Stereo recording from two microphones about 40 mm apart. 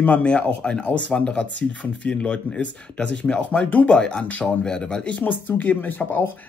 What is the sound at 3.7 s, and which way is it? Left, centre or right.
Speech, left.